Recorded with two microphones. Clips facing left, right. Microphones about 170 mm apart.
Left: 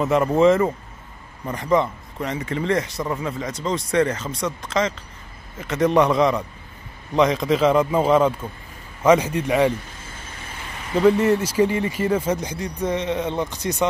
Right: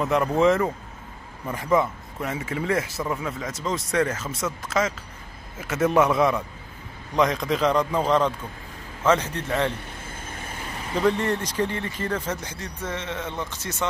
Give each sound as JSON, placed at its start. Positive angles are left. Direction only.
{"t": 0.0, "sound": "speech", "side_deg": 5}
{"t": 11.0, "sound": "speech", "side_deg": 5}